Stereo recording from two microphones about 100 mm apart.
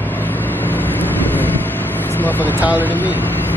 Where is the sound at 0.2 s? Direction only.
20° left (ahead or behind).